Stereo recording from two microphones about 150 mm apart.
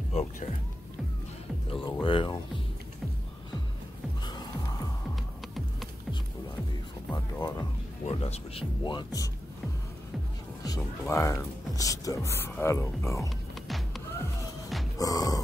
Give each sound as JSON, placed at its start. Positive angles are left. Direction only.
{"t": 0.1, "sound": "speech", "side_deg": 45}
{"t": 1.7, "sound": "speech", "side_deg": 35}
{"t": 7.1, "sound": "music", "side_deg": 20}
{"t": 8.0, "sound": "speech", "side_deg": 45}
{"t": 10.6, "sound": "speech", "side_deg": 20}
{"t": 13.7, "sound": "music", "side_deg": 0}
{"t": 15.0, "sound": "grunt", "side_deg": 25}